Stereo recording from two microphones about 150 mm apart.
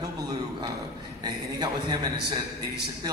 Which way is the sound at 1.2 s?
30° right (ahead or behind).